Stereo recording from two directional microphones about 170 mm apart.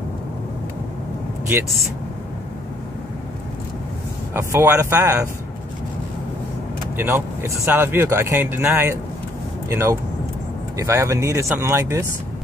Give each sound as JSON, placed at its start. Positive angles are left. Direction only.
{"t": 4.3, "sound": "speech", "side_deg": -15}
{"t": 7.0, "sound": "speech", "side_deg": -15}